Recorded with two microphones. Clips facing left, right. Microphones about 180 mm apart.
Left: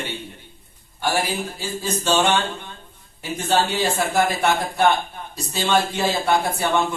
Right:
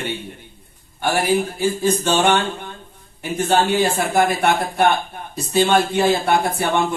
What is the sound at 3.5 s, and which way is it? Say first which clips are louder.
Speech: right 3 dB; 55° right (ahead or behind).